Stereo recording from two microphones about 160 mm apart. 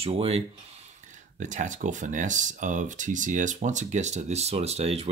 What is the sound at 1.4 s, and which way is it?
Speech, 50° right (ahead or behind).